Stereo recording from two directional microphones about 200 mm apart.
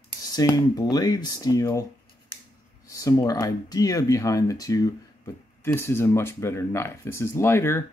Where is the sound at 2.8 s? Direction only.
15° left (ahead or behind).